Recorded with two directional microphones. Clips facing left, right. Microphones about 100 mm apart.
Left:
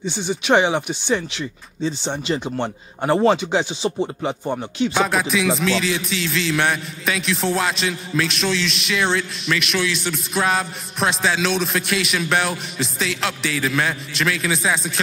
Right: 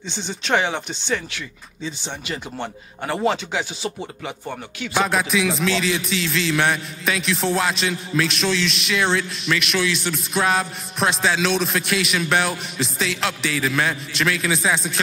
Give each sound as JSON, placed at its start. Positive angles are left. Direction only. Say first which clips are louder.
{"t": 0.0, "sound": "speech", "louder": "left 6 dB", "side_deg": 10}
{"t": 1.8, "sound": "speech", "louder": "left 7 dB", "side_deg": 35}
{"t": 4.9, "sound": "music", "louder": "right 2 dB", "side_deg": 0}